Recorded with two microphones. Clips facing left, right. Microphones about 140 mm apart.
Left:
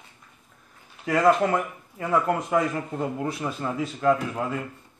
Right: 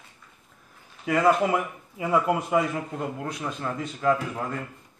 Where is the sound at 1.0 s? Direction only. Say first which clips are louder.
Left 1 dB; centre (ahead or behind).